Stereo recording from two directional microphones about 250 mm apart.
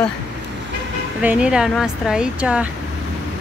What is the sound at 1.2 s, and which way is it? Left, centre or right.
Speech, centre.